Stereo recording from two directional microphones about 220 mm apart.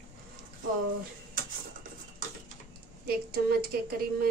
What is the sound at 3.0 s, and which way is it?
Speech, 45° right (ahead or behind).